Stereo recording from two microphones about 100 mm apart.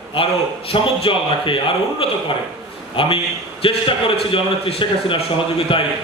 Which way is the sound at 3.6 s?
75° left (ahead or behind).